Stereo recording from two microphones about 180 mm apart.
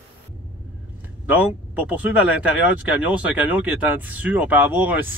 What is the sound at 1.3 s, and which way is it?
Speech, 10° right (ahead or behind).